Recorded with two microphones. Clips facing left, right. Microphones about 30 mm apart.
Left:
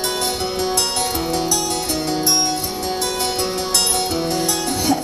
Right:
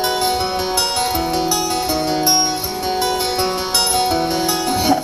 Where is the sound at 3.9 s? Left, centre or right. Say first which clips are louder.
Right 3 dB; centre.